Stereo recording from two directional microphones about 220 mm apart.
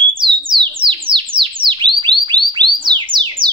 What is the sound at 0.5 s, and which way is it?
Bird, 20° right (ahead or behind).